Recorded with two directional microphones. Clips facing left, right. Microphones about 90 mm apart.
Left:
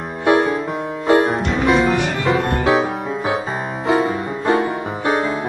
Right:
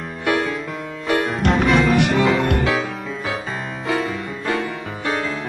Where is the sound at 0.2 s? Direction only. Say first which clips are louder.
Left 6 dB; 25° left (ahead or behind).